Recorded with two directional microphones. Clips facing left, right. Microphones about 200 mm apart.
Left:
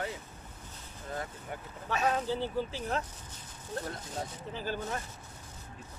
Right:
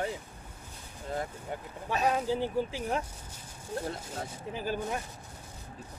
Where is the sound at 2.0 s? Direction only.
10° right (ahead or behind).